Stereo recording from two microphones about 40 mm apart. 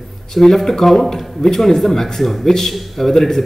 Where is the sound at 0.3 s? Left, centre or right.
Centre.